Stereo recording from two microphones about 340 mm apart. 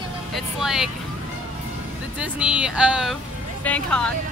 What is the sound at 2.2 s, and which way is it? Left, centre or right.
Speech, centre.